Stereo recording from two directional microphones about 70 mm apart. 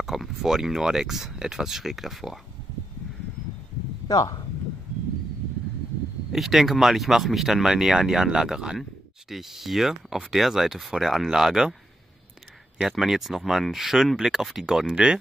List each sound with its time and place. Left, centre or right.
0.0 s speech: centre
4.1 s speech: left
6.3 s speech: centre
12.8 s speech: centre